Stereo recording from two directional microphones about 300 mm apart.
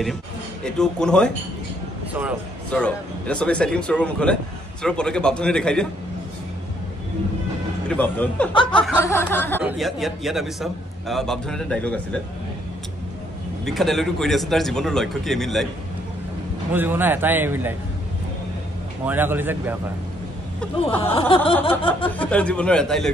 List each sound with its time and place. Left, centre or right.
0.7 s a man's voice: centre
7.9 s a man's voice: centre
13.7 s a man's voice: centre
16.7 s a man's voice: centre
19.0 s a man's voice: centre
20.6 s a man's voice: centre
21.0 s a sound: centre
22.2 s a man's voice: centre